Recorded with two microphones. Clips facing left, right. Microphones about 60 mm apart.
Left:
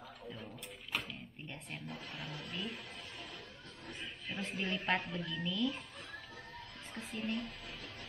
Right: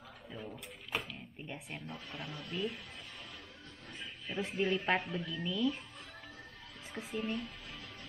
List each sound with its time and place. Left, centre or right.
0.3 s a sound: centre
1.0 s speech: centre
4.4 s a woman's voice: centre
6.9 s a woman's voice: centre